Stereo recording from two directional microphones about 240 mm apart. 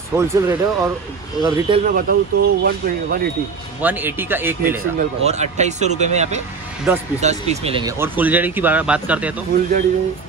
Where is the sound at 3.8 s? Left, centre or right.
Centre.